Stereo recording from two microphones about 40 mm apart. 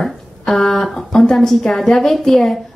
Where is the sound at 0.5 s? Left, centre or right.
Centre.